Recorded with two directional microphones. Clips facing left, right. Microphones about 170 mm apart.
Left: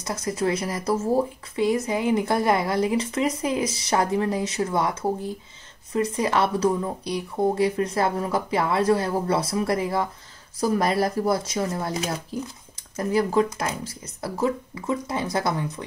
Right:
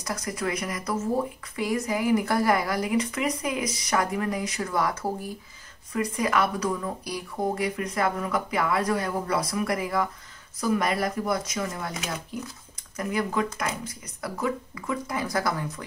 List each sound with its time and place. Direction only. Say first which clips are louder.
0.0 s speech: left 5 dB; 25° left (ahead or behind)